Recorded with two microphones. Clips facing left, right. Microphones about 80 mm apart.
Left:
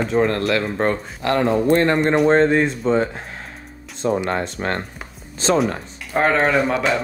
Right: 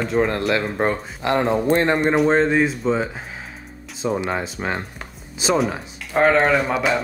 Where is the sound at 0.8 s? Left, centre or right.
Centre.